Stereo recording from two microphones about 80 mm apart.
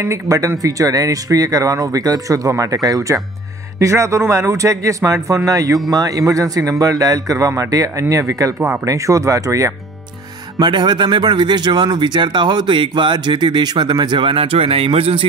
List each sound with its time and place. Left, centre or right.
0.0 s a man's voice: right
10.6 s speech: right